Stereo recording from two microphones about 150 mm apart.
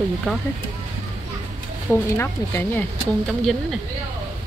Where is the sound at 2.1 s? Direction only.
15° left (ahead or behind).